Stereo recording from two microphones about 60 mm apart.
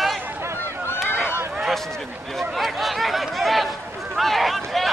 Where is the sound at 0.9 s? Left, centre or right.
Centre.